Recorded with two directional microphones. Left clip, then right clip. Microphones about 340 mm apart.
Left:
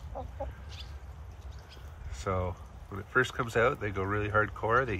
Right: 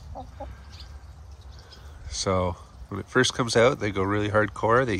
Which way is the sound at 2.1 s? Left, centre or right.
Right.